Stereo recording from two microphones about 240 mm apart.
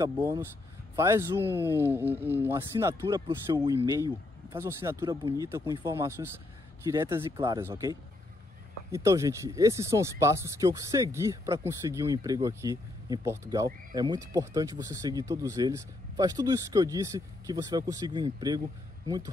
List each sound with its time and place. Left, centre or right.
0.0 s speech: centre